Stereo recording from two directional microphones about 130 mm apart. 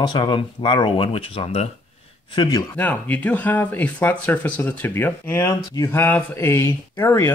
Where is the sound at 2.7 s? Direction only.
10° left (ahead or behind).